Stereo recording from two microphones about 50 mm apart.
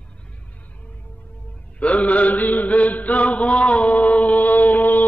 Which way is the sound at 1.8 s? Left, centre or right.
Left.